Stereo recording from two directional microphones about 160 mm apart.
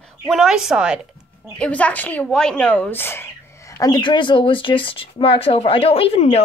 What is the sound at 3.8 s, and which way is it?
Speech, 25° left (ahead or behind).